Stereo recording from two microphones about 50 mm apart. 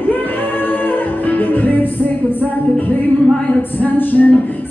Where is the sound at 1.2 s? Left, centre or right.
Left.